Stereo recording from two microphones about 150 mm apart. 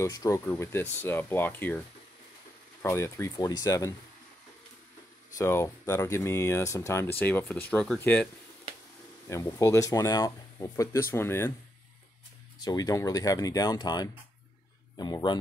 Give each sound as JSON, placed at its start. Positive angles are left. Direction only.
{"t": 0.0, "sound": "speech", "side_deg": 20}
{"t": 2.8, "sound": "speech", "side_deg": 20}
{"t": 5.4, "sound": "speech", "side_deg": 20}
{"t": 9.3, "sound": "speech", "side_deg": 20}
{"t": 12.6, "sound": "speech", "side_deg": 25}